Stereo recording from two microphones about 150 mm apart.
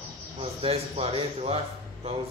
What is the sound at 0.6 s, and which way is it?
Speech, 40° right (ahead or behind).